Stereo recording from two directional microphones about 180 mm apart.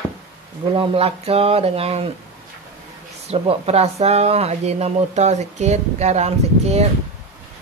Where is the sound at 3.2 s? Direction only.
35° right (ahead or behind).